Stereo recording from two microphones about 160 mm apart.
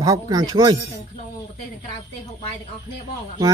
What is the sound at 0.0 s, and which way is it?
Speech, 20° right (ahead or behind).